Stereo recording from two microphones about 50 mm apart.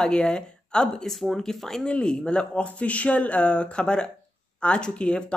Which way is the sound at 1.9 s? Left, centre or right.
Centre.